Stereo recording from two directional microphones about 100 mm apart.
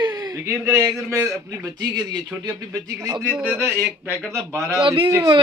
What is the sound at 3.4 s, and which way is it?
Speech, 20° right (ahead or behind).